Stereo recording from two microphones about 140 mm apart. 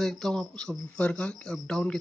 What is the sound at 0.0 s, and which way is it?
Speech, 5° left (ahead or behind).